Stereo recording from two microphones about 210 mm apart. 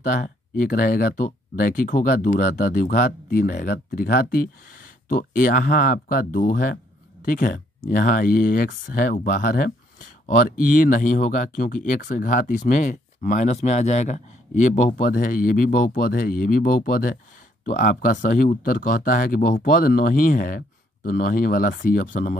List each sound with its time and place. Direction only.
0.0 s speech: 40° left (ahead or behind)